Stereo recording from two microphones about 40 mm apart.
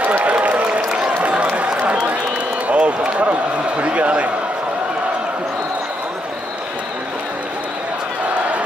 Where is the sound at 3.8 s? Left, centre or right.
Right.